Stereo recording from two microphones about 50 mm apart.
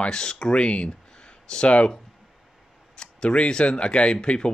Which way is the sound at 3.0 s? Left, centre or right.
Centre.